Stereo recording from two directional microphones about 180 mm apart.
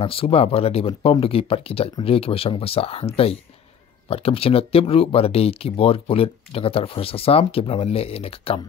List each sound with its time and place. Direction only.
0.0 s speech: 30° left (ahead or behind)